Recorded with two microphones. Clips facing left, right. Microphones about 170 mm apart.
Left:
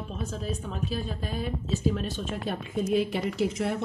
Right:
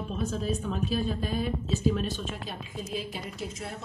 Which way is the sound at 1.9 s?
60° left (ahead or behind).